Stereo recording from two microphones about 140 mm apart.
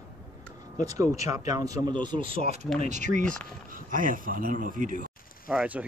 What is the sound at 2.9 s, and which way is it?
Speech, 60° right (ahead or behind).